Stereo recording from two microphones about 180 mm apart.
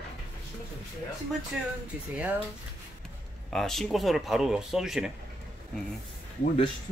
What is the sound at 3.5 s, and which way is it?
Speech, centre (ahead or behind).